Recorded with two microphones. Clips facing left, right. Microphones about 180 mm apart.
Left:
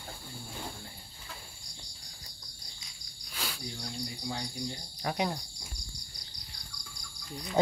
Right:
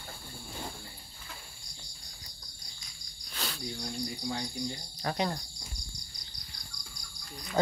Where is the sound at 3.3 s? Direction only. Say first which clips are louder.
Right 1 dB; 10° left (ahead or behind).